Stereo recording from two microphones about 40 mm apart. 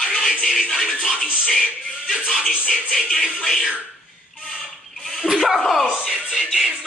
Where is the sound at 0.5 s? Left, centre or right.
Left.